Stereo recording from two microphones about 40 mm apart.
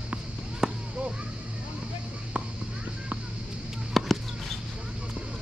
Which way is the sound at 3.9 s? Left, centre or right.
Centre.